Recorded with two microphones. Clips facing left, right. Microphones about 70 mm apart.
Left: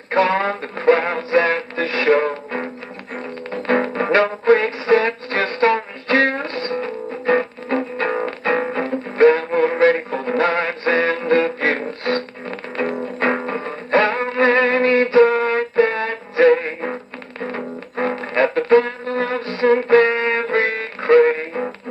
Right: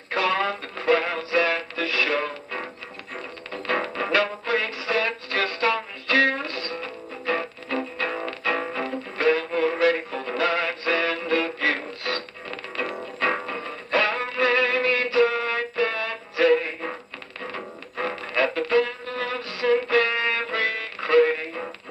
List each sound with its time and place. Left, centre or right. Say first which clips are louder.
0.1 s music: left 6 dB; left